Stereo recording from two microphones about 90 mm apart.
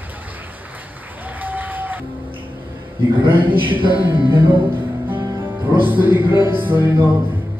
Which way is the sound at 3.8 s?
70° right (ahead or behind).